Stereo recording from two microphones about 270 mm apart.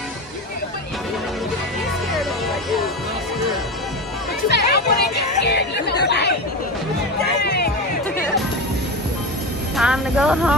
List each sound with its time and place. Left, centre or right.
4.5 s music: left
7.4 s music: left
9.8 s speech: centre